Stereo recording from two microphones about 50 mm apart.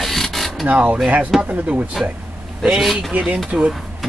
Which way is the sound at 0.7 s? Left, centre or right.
Right.